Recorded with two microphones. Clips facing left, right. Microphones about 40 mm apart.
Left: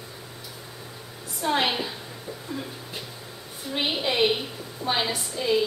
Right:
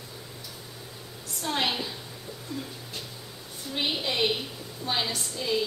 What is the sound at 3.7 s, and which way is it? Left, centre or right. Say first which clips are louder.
A woman's voice: left 3 dB; centre.